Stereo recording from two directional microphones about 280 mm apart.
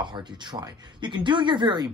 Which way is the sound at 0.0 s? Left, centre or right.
Centre.